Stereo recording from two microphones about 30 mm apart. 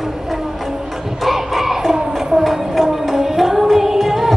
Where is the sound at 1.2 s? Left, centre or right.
Centre.